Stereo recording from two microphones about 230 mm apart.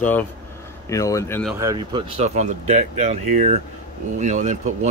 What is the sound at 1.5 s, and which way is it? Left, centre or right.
Speech, centre.